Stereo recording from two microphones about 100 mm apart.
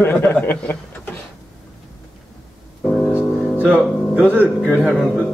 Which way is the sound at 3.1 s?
15° right (ahead or behind).